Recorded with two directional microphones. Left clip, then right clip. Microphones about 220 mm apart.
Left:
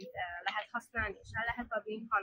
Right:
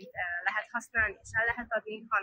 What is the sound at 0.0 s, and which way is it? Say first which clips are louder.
Speech: right 6 dB; 10° left (ahead or behind).